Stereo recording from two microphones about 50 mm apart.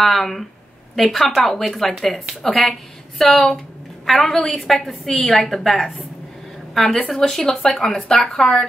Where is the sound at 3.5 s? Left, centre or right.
Centre.